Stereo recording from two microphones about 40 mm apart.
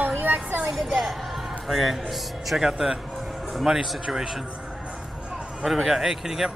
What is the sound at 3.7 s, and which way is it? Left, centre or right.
Speech, centre.